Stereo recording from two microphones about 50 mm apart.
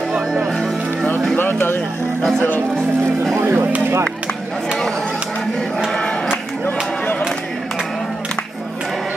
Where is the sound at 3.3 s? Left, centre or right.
Right.